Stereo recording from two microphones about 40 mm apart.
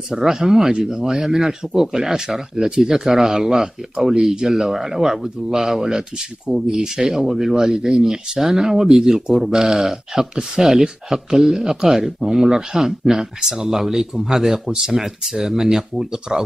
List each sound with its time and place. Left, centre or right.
0.1 s speech: centre
14.7 s speech: centre
15.0 s speech: centre